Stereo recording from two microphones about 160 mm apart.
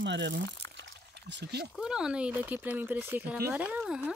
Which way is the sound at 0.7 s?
90° right.